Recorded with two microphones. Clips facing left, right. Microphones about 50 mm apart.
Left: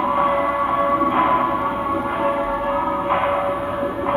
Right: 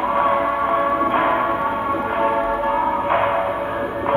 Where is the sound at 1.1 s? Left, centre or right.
Centre.